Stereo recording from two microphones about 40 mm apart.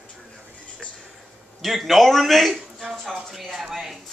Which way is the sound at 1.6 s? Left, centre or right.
Centre.